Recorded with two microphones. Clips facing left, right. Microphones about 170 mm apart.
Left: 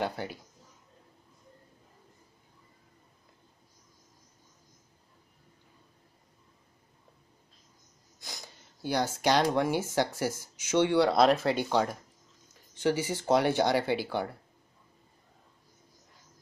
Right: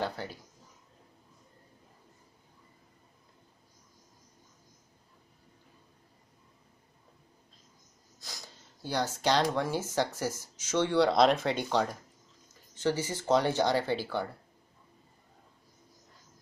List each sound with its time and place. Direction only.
0.0 s speech: 15° left (ahead or behind)
8.8 s speech: 10° left (ahead or behind)